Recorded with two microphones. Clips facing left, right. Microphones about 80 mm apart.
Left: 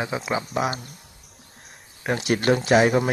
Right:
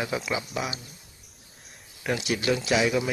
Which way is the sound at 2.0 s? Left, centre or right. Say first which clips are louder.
Left 5 dB; left.